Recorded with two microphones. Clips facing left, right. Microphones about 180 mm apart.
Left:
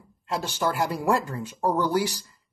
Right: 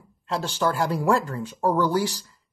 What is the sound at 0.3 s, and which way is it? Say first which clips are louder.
Speech: right 2 dB; 15° left (ahead or behind).